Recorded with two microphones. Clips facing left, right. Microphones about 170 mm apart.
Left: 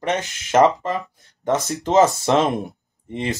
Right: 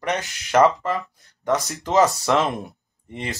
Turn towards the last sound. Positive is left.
turn(degrees=20)  # may be behind; listen again after turning